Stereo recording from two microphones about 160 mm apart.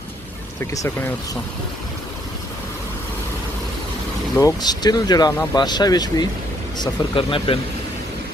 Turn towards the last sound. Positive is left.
turn(degrees=35)  # may be behind; listen again after turning